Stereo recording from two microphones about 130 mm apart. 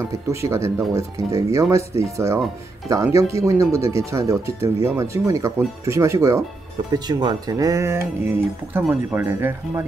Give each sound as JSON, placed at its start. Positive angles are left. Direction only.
{"t": 0.1, "sound": "speech", "side_deg": -20}
{"t": 6.9, "sound": "speech", "side_deg": -35}